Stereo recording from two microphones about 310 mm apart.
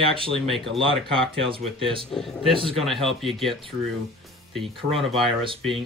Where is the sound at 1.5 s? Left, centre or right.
Centre.